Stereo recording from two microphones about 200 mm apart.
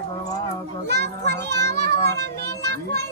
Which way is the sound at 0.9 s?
55° right (ahead or behind).